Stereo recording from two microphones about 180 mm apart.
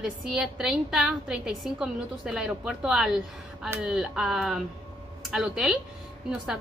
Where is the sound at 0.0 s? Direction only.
5° right (ahead or behind).